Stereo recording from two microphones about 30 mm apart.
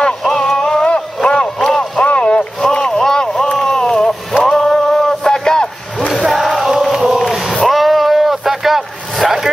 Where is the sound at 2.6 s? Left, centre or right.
Left.